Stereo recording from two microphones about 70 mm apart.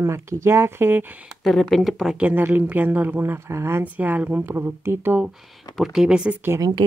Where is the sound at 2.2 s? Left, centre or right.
Right.